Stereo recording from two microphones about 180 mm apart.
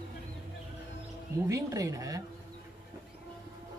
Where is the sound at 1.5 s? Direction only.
15° right (ahead or behind).